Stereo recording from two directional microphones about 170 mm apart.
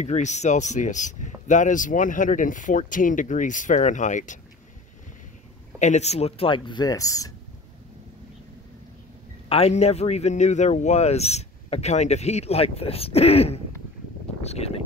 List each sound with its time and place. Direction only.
0.0 s speech: 40° left (ahead or behind)
5.8 s speech: 40° left (ahead or behind); by 7.3 s 20° left (ahead or behind)
9.5 s speech: 35° left (ahead or behind)
14.4 s a sound: 40° left (ahead or behind)